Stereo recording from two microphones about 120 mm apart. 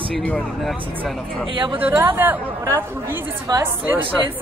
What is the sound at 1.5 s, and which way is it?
Speech, 45° right (ahead or behind).